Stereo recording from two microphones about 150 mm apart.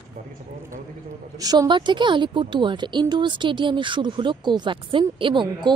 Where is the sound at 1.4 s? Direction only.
25° right (ahead or behind).